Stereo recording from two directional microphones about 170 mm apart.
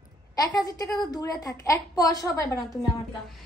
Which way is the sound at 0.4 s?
20° left (ahead or behind).